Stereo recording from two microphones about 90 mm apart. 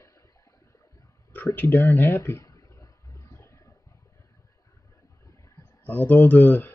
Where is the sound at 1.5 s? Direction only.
25° left (ahead or behind).